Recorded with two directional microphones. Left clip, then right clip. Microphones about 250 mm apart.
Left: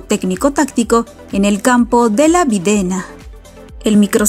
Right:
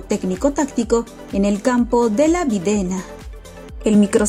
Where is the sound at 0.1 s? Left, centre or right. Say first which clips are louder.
Left 4 dB; left.